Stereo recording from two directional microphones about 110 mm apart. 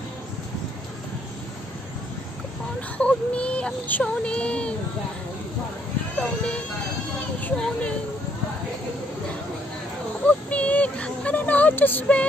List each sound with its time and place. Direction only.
3.0 s child singing: 10° left (ahead or behind)
6.1 s child singing: 10° left (ahead or behind)
7.3 s speech: 15° left (ahead or behind)
10.2 s speech: 10° left (ahead or behind)